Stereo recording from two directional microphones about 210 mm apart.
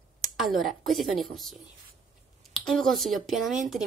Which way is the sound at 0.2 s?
Centre (ahead or behind).